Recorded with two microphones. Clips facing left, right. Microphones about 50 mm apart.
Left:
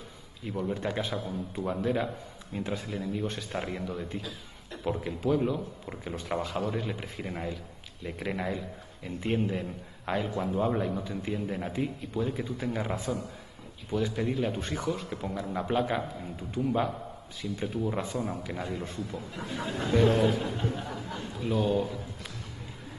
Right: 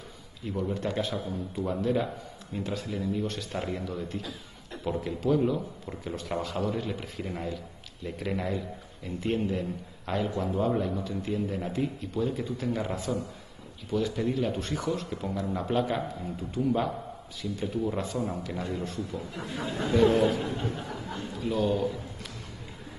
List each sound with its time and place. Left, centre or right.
0.5 s a man's voice: centre
2.6 s speech: centre
2.9 s speech: centre
4.2 s a sound: centre
5.0 s a man's voice: centre
10.2 s a man's voice: centre
13.9 s a man's voice: centre